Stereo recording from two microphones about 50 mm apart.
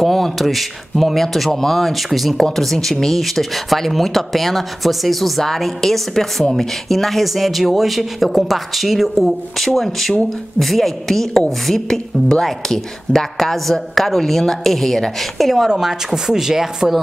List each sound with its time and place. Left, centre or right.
0.0 s speech: centre